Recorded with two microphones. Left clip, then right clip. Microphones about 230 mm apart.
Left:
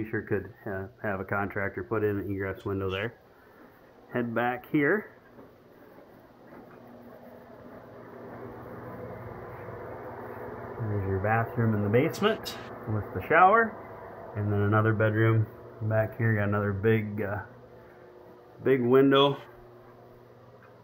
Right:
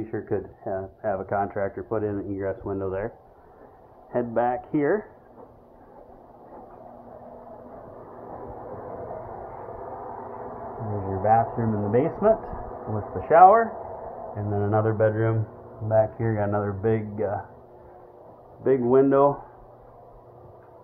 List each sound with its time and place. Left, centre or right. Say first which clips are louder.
0.0 s speech: right 2 dB; left
4.1 s speech: right 5 dB; centre
11.2 s speech: right 8 dB; left
18.6 s speech: right 3 dB; left